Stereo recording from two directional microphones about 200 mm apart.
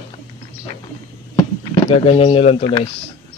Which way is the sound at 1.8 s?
25° left (ahead or behind).